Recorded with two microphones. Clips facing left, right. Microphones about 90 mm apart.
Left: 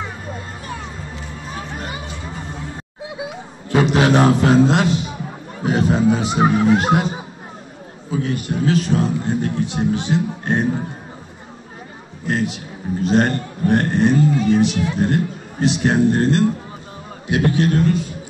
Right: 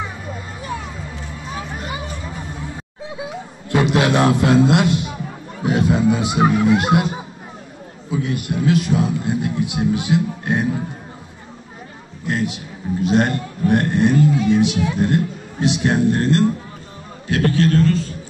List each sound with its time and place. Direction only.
3.7 s a man's voice: centre (ahead or behind)
12.3 s a man's voice: centre (ahead or behind)
17.3 s a man's voice: 20° left (ahead or behind)